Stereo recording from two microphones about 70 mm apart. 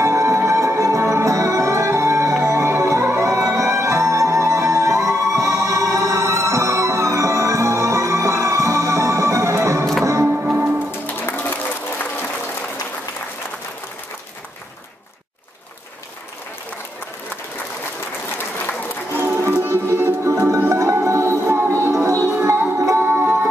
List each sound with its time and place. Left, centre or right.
0.0 s music: right
10.2 s music: right
10.9 s music: left
19.1 s music: right